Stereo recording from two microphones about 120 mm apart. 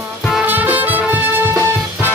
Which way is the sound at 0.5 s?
15° right (ahead or behind).